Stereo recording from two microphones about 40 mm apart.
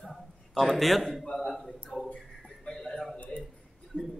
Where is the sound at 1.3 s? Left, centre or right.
Centre.